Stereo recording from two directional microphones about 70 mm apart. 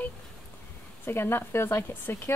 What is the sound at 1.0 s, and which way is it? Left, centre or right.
A woman's voice, left.